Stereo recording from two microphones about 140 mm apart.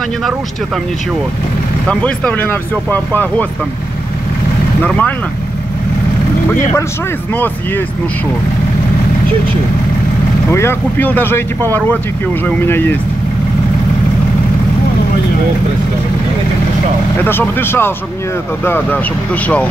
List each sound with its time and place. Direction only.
1.9 s speech: 10° left (ahead or behind)
4.8 s speech: 10° left (ahead or behind)
7.3 s speech: 15° left (ahead or behind)
10.5 s speech: 15° left (ahead or behind)
17.2 s speech: 15° left (ahead or behind)